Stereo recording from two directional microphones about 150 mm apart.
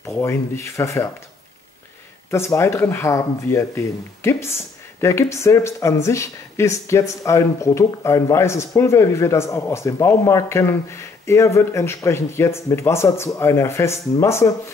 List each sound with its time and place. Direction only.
0.0 s speech: 20° left (ahead or behind)
2.3 s speech: 15° left (ahead or behind)